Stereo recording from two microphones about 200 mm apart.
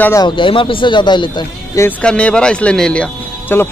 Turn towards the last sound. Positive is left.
turn(degrees=10)  # may be behind; listen again after turning